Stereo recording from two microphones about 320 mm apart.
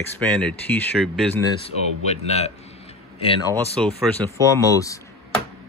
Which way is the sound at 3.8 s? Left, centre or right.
Centre.